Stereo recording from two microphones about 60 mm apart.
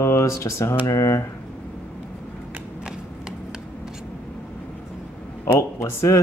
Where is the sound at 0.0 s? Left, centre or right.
Left.